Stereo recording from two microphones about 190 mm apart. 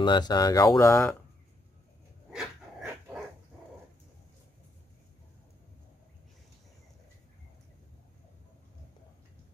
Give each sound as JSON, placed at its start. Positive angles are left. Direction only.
{"t": 0.0, "sound": "speech", "side_deg": 25}
{"t": 2.3, "sound": "dog", "side_deg": -5}